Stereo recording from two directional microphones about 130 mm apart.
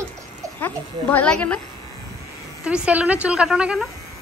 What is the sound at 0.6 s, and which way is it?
Speech, 15° left (ahead or behind).